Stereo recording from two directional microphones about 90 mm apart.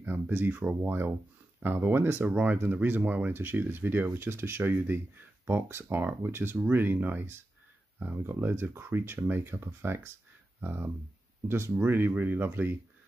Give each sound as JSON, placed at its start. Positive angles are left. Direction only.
{"t": 0.0, "sound": "speech", "side_deg": -20}